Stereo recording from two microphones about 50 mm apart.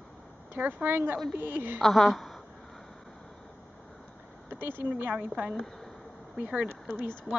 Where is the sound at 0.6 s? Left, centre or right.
Right.